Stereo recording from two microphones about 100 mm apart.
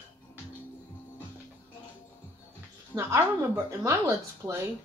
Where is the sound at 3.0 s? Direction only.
30° right (ahead or behind).